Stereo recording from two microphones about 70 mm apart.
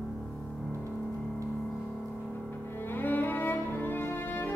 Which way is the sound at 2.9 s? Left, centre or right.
Left.